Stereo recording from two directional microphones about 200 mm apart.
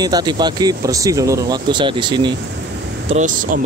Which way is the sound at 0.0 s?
20° right (ahead or behind).